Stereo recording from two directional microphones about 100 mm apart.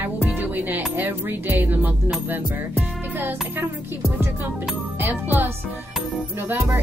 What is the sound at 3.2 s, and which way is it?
Speech, 20° right (ahead or behind).